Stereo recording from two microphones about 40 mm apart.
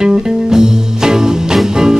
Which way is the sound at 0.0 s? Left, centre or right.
Centre.